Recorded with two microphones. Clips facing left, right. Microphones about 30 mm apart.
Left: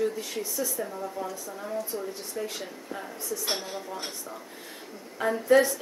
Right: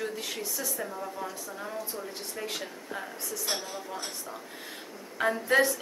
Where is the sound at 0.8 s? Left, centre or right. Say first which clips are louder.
Left 2 dB; centre.